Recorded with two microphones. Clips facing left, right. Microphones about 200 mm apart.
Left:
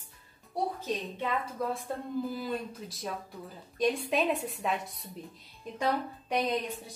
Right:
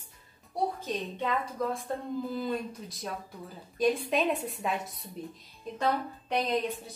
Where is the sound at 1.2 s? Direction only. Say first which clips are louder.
Right 3 dB; 5° left (ahead or behind).